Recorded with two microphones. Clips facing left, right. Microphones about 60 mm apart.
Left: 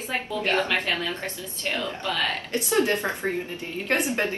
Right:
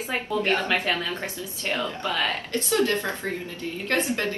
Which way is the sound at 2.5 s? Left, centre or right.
Left.